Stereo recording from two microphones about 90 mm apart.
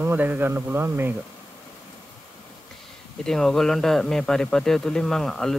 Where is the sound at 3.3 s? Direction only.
5° left (ahead or behind).